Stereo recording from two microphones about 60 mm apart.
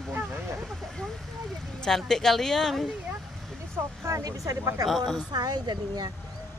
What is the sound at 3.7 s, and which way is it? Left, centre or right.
Speech, right.